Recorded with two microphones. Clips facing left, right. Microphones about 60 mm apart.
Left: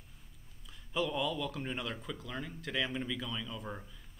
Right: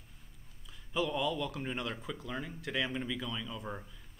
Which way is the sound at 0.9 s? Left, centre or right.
Centre.